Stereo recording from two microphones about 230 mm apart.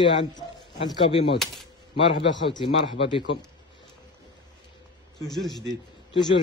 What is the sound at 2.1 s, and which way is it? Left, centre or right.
Speech, left.